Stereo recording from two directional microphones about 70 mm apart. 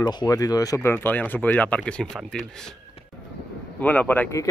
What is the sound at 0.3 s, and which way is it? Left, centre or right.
Speech, left.